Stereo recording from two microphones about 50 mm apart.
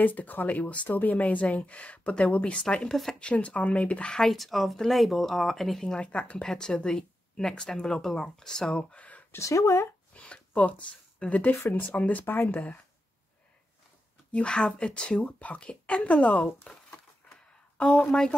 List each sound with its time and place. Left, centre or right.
0.0 s a woman's voice: left
2.6 s speech: centre
3.2 s a woman's voice: left
4.2 s speech: centre
5.8 s speech: centre
8.9 s a sound: left
9.4 s speech: left
10.1 s speech: left
14.3 s a woman's voice: centre
17.7 s speech: centre